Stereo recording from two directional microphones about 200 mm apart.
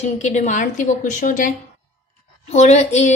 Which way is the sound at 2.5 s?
35° left (ahead or behind).